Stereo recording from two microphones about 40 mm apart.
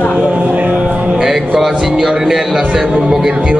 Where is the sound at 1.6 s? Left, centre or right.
Centre.